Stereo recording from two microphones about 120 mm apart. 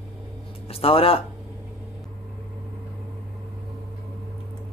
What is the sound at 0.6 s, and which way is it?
Speech, 55° left (ahead or behind).